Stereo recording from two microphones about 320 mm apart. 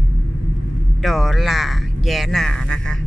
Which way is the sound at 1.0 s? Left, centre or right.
Centre.